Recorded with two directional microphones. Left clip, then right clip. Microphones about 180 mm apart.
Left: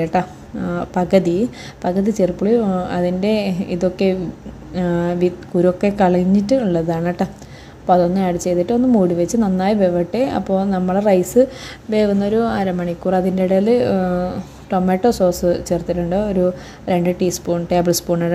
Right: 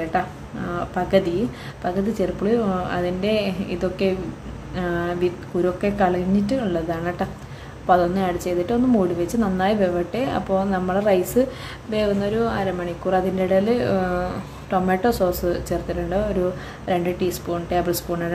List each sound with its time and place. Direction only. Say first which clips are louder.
0.1 s a woman's voice: left 4 dB; 35° left (ahead or behind)